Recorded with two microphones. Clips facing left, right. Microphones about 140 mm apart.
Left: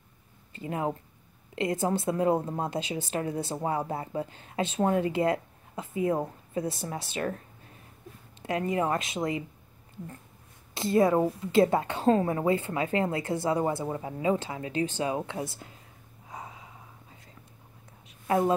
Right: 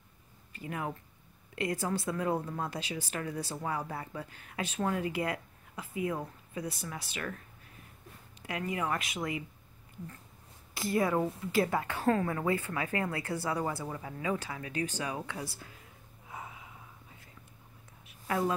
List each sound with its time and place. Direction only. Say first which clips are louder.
0.5 s a woman's voice: left 6 dB; 25° left (ahead or behind)
10.7 s a woman's voice: left 6 dB; 25° left (ahead or behind)
16.3 s snort: left 2 dB; 25° left (ahead or behind)
18.2 s a sound: left 6 dB; 30° left (ahead or behind)